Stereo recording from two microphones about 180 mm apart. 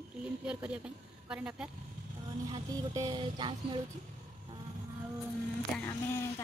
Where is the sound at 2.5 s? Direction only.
20° right (ahead or behind).